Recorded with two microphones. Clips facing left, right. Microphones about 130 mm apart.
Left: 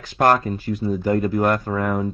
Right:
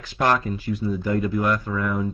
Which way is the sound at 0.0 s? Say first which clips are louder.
Left 4 dB; 45° left (ahead or behind).